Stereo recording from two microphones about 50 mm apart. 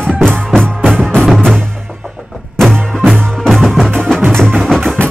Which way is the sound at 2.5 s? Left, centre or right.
Centre.